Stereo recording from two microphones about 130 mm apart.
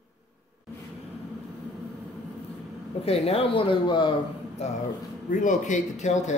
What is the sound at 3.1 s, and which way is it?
Speech, 50° left (ahead or behind).